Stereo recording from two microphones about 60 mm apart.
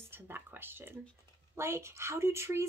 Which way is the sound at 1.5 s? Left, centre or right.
Right.